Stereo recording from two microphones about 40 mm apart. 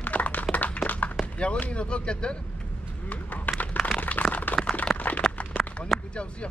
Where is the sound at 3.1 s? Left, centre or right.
Left.